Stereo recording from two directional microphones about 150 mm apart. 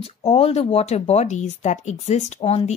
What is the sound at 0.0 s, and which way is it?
Speech, 45° left (ahead or behind).